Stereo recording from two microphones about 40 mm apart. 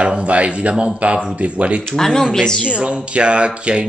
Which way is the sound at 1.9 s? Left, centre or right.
Centre.